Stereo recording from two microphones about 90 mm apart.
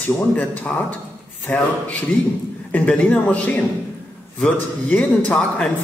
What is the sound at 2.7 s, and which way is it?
A man's voice, 15° left (ahead or behind).